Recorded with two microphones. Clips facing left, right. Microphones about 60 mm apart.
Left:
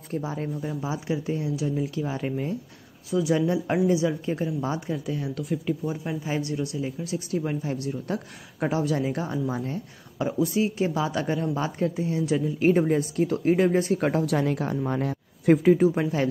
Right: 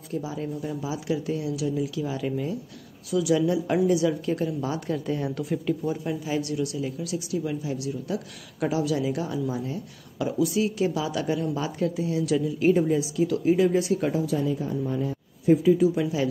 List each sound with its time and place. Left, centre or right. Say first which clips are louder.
0.1 s speech: left 1 dB; left
0.6 s speech: even; left
4.8 s speech: right 2 dB; centre
5.9 s speech: right 1 dB; left
14.2 s speech: left 1 dB; left